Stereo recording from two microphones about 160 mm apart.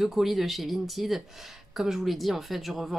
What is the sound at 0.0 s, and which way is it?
Speech, centre (ahead or behind).